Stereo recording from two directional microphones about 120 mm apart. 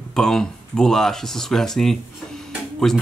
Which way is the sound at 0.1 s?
5° left (ahead or behind).